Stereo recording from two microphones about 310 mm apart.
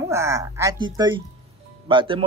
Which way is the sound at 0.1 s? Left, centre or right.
Centre.